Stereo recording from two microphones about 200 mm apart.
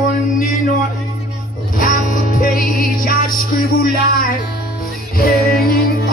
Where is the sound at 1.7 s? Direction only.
45° left (ahead or behind).